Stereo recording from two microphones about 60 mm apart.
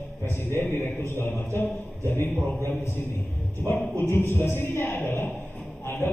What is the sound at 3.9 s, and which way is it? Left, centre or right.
A man's voice, left.